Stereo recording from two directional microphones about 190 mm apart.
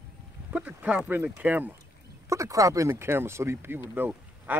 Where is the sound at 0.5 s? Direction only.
5° right (ahead or behind).